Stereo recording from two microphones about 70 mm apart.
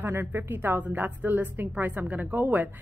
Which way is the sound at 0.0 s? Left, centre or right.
Right.